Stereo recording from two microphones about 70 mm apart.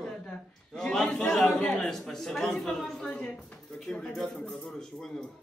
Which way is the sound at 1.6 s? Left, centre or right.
Centre.